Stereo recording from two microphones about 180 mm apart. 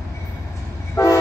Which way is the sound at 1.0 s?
15° left (ahead or behind).